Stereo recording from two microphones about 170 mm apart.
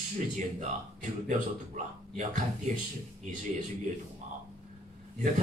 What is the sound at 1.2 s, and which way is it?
A man's voice, 45° right (ahead or behind).